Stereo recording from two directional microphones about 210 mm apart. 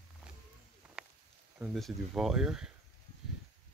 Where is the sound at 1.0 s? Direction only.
Centre (ahead or behind).